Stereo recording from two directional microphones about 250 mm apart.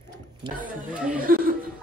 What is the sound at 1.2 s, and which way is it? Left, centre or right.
Speech, right.